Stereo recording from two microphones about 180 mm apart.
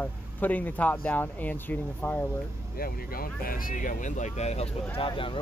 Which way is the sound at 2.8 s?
55° left (ahead or behind).